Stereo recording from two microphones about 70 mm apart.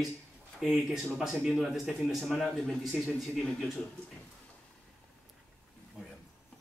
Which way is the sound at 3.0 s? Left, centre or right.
Centre.